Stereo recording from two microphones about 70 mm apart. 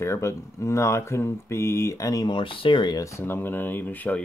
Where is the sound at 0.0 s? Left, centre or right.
Left.